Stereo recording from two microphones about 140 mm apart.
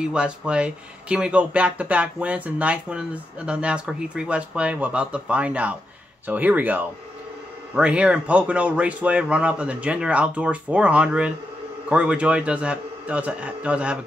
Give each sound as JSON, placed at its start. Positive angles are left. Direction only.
{"t": 0.0, "sound": "speech", "side_deg": -5}